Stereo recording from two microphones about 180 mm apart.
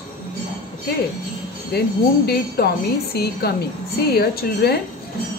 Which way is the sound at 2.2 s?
60° left (ahead or behind).